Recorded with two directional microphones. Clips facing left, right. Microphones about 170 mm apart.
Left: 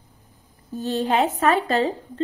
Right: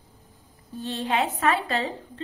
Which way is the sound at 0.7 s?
40° left (ahead or behind).